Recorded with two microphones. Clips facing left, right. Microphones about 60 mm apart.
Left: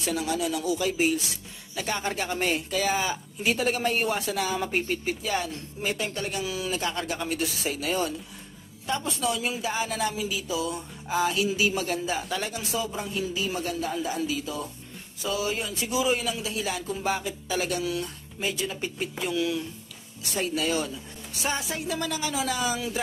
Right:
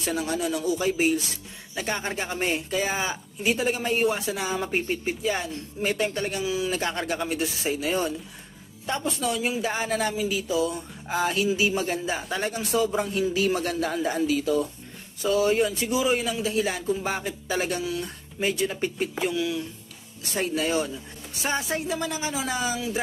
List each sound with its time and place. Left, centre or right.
0.0 s speech: right
2.4 s speech: right
3.4 s speech: centre
5.8 s speech: right
6.4 s speech: centre
6.7 s speech: right
7.2 s speech: right
8.8 s speech: right
13.5 s speech: right
19.3 s speech: centre
20.2 s speech: right
21.8 s speech: centre